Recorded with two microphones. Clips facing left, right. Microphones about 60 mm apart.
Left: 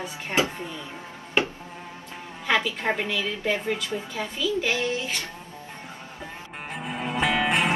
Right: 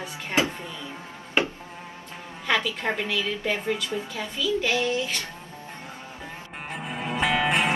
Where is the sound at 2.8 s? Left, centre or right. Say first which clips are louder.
Left 1 dB; centre.